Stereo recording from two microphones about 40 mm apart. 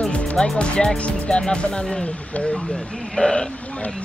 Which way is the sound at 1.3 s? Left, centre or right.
Left.